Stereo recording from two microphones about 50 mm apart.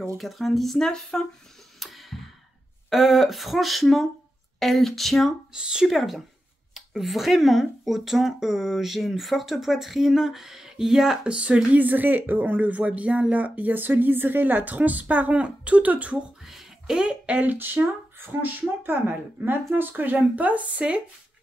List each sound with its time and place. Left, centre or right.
0.2 s speech: centre
1.8 s tick-tock: centre
2.9 s speech: centre
5.5 s speech: centre
5.9 s speech: centre
11.2 s speech: right
16.4 s a sound: centre; by 17.6 s right
17.6 s speech: right